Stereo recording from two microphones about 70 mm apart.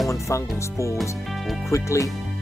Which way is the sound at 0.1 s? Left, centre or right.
Left.